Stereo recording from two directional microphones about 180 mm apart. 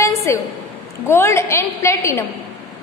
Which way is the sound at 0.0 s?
15° left (ahead or behind).